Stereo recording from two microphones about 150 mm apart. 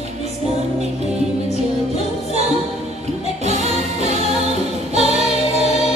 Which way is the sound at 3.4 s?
45° right (ahead or behind).